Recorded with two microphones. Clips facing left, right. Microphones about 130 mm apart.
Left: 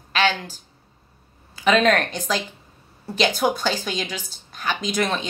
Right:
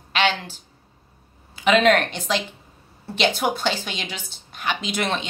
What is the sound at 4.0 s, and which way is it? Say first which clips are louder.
Speech: left 3 dB; 25° right (ahead or behind).